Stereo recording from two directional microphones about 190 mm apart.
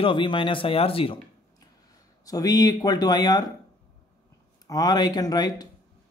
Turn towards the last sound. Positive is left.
turn(degrees=20)  # may be behind; listen again after turning